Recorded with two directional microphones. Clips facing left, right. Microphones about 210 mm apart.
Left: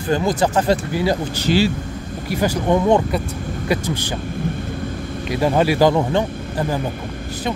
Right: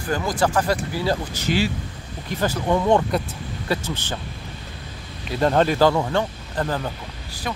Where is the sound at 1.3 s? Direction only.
30° left (ahead or behind).